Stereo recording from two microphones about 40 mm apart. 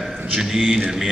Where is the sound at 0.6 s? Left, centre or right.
Right.